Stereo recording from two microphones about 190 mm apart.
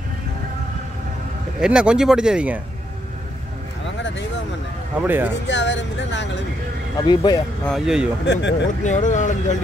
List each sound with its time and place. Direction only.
1.6 s speech: 5° right (ahead or behind)
5.0 s speech: 10° right (ahead or behind)
5.5 s speech: 70° left (ahead or behind)
7.0 s speech: 20° left (ahead or behind)
7.6 s speech: centre (ahead or behind)
8.3 s speech: 65° left (ahead or behind)
8.8 s speech: 40° left (ahead or behind)